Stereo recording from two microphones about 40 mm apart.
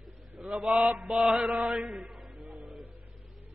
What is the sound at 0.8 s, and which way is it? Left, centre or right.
Mantra, centre.